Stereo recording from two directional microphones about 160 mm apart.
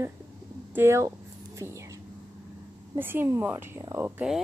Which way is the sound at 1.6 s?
20° right (ahead or behind).